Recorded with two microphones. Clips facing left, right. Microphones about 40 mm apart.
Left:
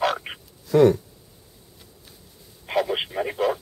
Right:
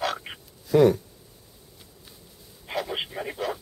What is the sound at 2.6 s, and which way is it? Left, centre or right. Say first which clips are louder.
Radio: left 6 dB; centre.